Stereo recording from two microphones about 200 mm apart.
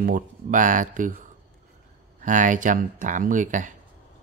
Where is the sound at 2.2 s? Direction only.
40° right (ahead or behind).